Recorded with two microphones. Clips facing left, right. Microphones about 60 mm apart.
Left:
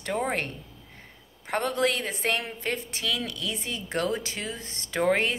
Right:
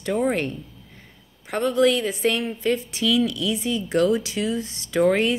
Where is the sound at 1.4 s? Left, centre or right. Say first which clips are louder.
Right 6 dB; left.